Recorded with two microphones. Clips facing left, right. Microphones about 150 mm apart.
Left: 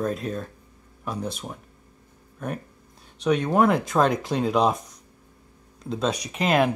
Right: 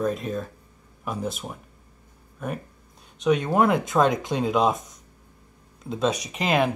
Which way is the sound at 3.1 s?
Centre (ahead or behind).